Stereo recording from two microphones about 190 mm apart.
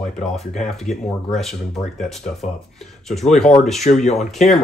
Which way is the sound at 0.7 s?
Centre (ahead or behind).